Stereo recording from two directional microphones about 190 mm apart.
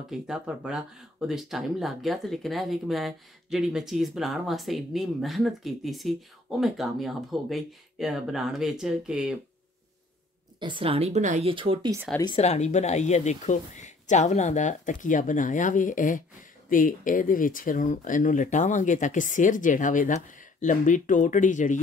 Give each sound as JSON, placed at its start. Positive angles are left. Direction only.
{"t": 0.1, "sound": "speech", "side_deg": -5}
{"t": 10.6, "sound": "speech", "side_deg": -25}
{"t": 11.5, "sound": "speech", "side_deg": -25}
{"t": 12.4, "sound": "speech", "side_deg": 35}